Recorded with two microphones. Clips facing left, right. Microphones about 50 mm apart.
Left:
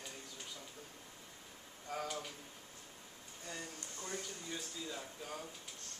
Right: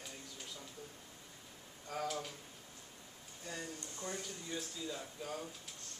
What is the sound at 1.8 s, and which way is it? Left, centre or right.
Speech, centre.